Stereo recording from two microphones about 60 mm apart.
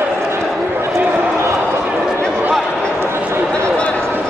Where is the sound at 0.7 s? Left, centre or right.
Right.